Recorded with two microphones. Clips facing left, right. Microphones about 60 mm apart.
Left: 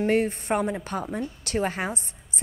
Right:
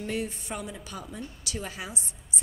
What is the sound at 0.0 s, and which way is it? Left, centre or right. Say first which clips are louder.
A woman's voice: left 10 dB; left.